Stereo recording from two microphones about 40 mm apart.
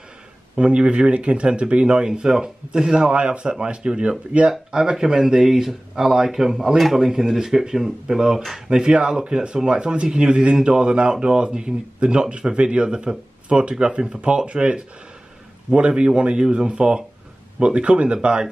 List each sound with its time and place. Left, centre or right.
0.6 s speech: right
2.0 s speech: centre